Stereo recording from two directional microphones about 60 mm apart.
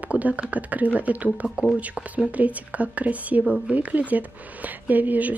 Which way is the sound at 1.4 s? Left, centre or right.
Centre.